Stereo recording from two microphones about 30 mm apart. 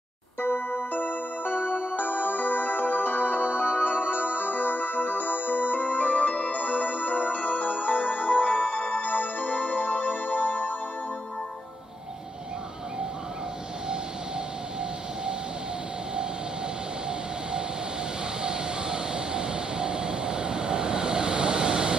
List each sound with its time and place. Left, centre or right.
0.4 s music: left
6.2 s music: left
9.0 s music: left
9.5 s music: left
18.4 s vehicle: right